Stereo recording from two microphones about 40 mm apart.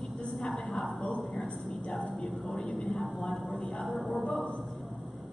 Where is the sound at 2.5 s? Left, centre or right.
Centre.